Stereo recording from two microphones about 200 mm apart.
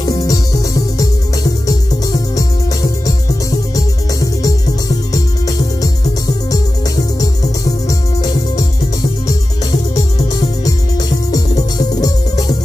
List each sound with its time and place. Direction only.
0.0 s music: 20° left (ahead or behind)
3.7 s music: 15° left (ahead or behind)
7.9 s music: 20° left (ahead or behind)
10.6 s music: 20° left (ahead or behind)